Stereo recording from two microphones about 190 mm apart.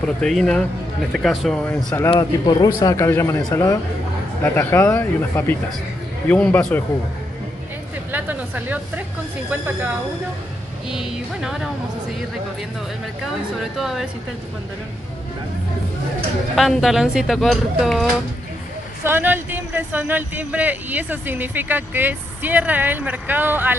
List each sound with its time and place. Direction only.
0.0 s speech: 5° left (ahead or behind)
1.9 s speech: 20° left (ahead or behind)
8.1 s speech: 10° right (ahead or behind)
13.6 s speech: centre (ahead or behind)
16.5 s speech: centre (ahead or behind)
19.0 s speech: 10° right (ahead or behind)